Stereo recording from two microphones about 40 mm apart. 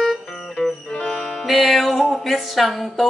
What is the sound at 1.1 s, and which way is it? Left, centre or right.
Music, centre.